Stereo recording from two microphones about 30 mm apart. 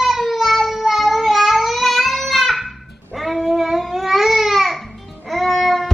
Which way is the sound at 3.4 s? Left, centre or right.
Centre.